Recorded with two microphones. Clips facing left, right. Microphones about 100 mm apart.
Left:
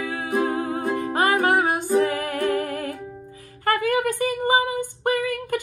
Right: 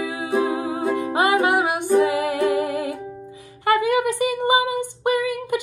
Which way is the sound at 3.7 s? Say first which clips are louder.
Right 3 dB; 20° right (ahead or behind).